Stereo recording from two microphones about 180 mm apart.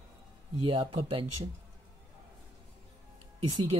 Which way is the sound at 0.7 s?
30° right (ahead or behind).